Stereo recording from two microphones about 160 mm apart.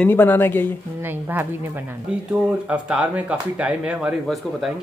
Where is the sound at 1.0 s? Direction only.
15° right (ahead or behind).